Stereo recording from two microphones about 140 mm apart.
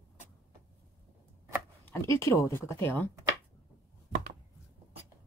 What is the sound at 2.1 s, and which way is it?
Speech, 20° left (ahead or behind).